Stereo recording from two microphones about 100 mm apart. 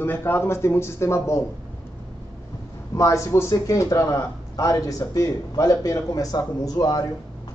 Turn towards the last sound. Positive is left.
turn(degrees=40)  # may be behind; listen again after turning